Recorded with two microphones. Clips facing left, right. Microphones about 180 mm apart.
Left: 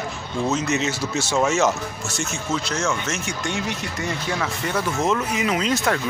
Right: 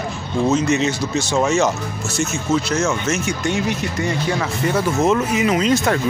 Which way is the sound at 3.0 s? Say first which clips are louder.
Right 7 dB; 5° right (ahead or behind).